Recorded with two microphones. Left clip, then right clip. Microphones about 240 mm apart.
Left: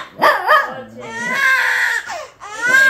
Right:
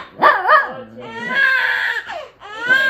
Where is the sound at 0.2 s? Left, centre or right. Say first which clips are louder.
Right 1 dB; left.